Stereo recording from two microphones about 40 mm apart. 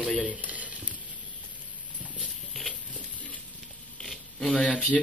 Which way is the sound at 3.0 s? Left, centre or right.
Left.